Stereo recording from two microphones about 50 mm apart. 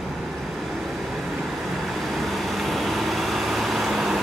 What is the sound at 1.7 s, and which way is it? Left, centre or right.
Vehicle, centre.